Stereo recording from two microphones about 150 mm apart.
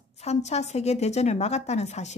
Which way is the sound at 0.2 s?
45° left (ahead or behind).